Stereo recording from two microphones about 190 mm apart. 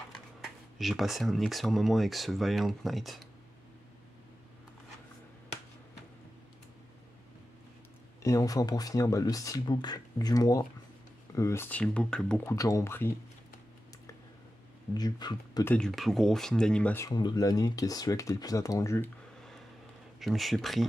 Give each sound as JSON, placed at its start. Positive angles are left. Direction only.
{"t": 0.7, "sound": "speech", "side_deg": 0}
{"t": 8.2, "sound": "speech", "side_deg": 15}
{"t": 12.5, "sound": "speech", "side_deg": 15}
{"t": 15.0, "sound": "speech", "side_deg": 20}
{"t": 15.7, "sound": "speech", "side_deg": 0}
{"t": 20.2, "sound": "speech", "side_deg": 0}